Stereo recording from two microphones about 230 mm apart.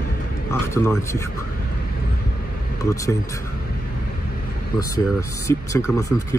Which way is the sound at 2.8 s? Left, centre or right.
Centre.